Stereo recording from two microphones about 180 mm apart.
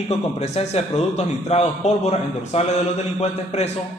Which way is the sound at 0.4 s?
35° left (ahead or behind).